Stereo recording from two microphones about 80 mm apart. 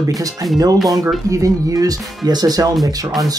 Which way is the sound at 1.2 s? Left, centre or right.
Right.